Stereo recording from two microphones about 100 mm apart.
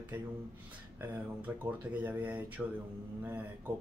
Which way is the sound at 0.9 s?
15° right (ahead or behind).